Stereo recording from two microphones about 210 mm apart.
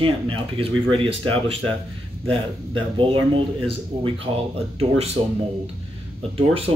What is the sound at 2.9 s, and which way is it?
Speech, 25° right (ahead or behind).